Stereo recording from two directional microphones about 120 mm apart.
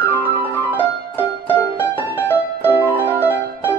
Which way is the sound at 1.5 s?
15° left (ahead or behind).